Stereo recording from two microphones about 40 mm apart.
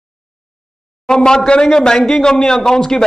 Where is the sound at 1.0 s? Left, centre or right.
Centre.